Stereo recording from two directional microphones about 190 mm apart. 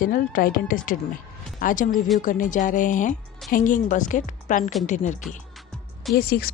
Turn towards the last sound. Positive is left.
turn(degrees=55)  # may be behind; listen again after turning